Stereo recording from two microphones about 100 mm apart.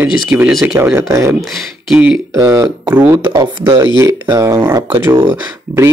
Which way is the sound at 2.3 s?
30° right (ahead or behind).